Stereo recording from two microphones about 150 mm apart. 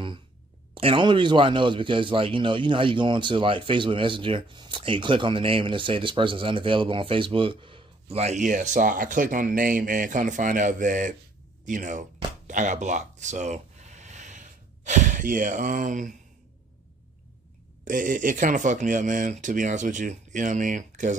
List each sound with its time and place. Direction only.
0.7 s speech: 35° right (ahead or behind); by 12.1 s 60° right (ahead or behind)
12.4 s a sound: 55° right (ahead or behind)
17.8 s speech: 65° right (ahead or behind)